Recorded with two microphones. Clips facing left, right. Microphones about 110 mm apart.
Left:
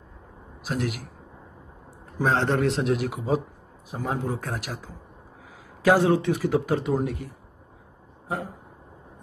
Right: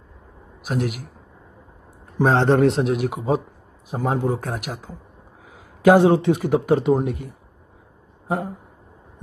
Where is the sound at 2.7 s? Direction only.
20° right (ahead or behind).